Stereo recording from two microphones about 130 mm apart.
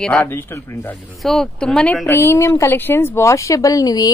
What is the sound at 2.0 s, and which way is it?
Speech, 20° left (ahead or behind).